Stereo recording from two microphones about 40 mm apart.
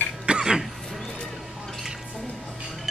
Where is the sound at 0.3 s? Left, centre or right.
Right.